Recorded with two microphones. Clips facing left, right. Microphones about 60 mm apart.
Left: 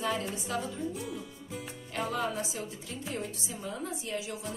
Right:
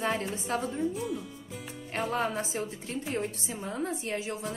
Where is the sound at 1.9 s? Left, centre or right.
Right.